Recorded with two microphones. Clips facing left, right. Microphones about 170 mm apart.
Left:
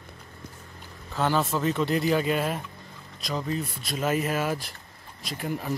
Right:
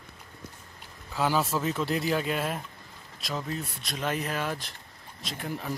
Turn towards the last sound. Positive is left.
turn(degrees=0)  # may be behind; listen again after turning